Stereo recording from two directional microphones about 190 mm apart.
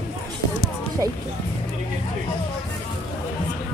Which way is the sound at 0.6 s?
20° right (ahead or behind).